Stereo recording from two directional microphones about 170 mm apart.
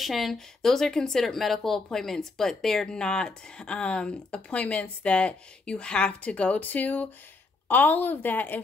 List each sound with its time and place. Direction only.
0.0 s a woman's voice: centre (ahead or behind)